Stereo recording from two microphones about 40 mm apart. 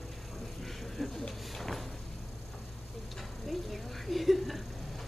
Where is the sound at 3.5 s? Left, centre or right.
Centre.